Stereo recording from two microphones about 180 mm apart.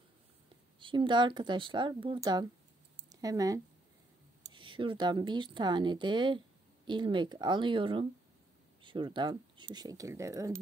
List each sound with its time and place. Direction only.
0.7 s speech: 25° right (ahead or behind)